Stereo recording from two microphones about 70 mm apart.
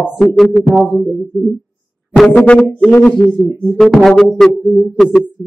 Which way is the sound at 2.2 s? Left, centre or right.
Left.